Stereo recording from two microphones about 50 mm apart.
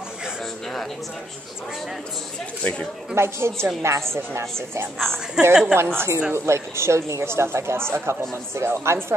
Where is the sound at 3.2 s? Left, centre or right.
Right.